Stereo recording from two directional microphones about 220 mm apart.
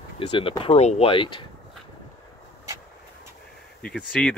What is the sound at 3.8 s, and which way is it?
Speech, 5° left (ahead or behind).